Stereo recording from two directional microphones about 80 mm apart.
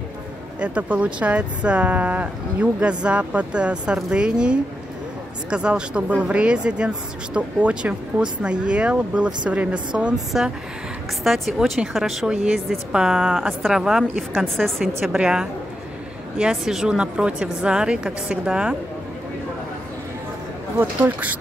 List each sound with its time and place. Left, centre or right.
0.6 s speech: centre
15.1 s speech: centre